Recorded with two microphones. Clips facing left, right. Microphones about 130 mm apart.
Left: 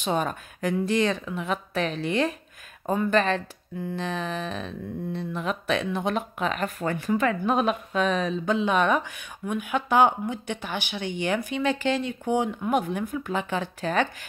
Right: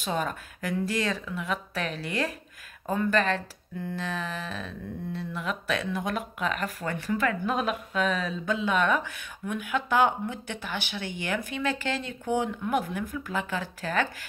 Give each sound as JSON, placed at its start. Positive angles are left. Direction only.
{"t": 0.0, "sound": "speech", "side_deg": 20}